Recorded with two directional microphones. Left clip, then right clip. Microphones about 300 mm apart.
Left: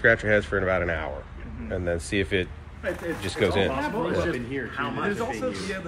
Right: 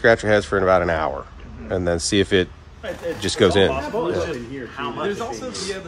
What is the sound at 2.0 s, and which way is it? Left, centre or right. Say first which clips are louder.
Speech: right 8 dB; right.